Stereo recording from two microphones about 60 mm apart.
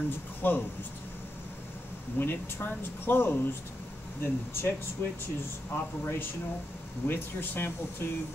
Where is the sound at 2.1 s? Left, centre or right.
Left.